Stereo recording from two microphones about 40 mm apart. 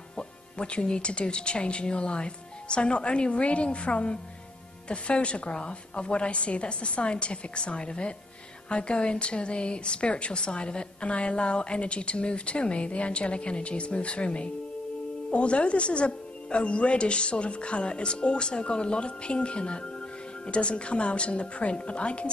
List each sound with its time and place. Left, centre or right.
0.1 s a woman's voice: left